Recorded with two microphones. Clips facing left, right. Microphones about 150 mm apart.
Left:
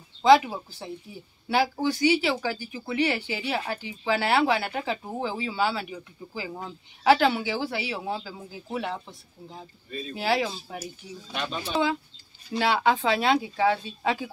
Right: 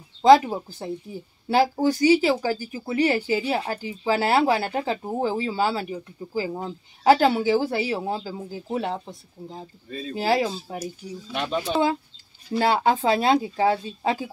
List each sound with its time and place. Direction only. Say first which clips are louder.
0.2 s speech: right 3 dB; 40° right (ahead or behind)
12.5 s speech: right 3 dB; 40° right (ahead or behind)